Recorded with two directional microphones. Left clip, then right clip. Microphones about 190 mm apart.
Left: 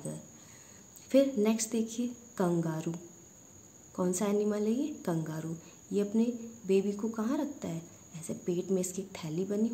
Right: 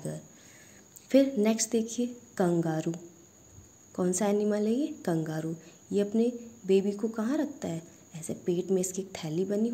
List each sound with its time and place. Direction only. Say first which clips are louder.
1.0 s speech: right 2 dB; 20° right (ahead or behind)